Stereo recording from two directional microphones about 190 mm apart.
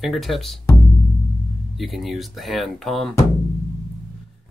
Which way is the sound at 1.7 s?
Centre (ahead or behind).